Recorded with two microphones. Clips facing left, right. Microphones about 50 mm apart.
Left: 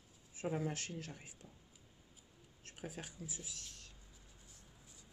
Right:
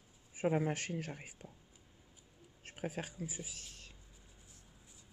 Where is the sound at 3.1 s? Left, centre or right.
Right.